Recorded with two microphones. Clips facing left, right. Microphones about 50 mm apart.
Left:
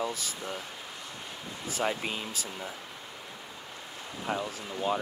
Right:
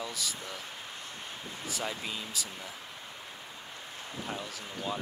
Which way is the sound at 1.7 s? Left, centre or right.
Left.